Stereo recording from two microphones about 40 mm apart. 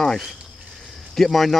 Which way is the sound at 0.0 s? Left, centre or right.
Centre.